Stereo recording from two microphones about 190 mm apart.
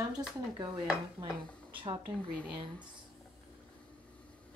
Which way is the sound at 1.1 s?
25° right (ahead or behind).